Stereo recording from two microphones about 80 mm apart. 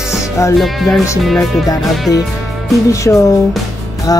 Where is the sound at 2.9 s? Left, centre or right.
Left.